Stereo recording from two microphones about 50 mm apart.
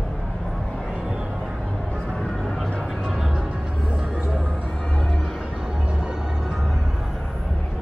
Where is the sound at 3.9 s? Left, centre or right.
Right.